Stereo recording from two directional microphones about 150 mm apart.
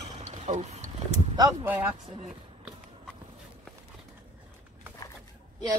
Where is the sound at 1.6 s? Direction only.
10° right (ahead or behind).